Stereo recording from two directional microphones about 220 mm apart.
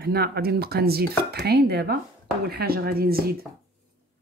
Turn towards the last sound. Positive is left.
turn(degrees=-45)  # may be behind; listen again after turning